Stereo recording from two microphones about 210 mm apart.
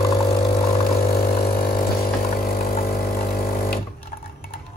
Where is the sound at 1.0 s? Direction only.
45° left (ahead or behind).